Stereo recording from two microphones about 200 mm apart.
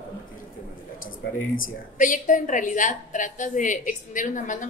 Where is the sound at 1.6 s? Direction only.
40° left (ahead or behind).